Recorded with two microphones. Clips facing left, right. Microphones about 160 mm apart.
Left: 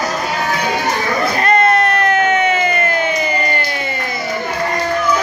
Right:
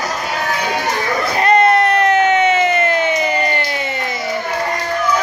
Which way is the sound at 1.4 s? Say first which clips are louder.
Right 3 dB; 20° right (ahead or behind).